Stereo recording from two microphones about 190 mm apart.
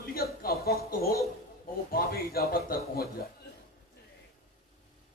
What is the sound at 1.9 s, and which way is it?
A man's voice, 50° left (ahead or behind).